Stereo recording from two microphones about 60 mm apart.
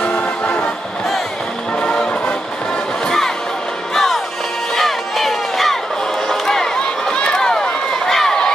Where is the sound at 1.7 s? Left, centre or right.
Centre.